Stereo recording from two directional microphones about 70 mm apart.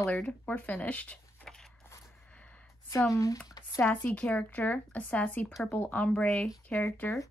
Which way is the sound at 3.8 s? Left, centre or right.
Left.